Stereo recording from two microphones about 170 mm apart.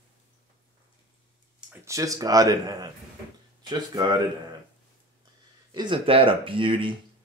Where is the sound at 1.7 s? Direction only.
20° right (ahead or behind).